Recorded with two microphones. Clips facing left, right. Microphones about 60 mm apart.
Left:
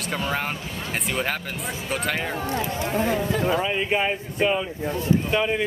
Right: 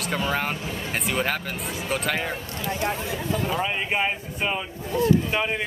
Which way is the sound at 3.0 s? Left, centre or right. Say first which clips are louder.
Left 5 dB; left.